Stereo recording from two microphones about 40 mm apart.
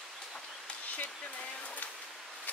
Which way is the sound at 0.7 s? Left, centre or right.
Left.